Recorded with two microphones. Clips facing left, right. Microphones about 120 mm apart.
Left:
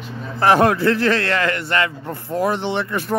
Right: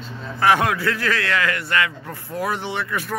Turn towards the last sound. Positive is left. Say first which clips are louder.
# left 4 dB
turn(degrees=30)  # may be behind; listen again after turning